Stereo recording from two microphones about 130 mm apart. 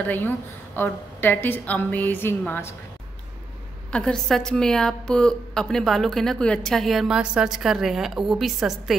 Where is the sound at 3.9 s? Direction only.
5° left (ahead or behind).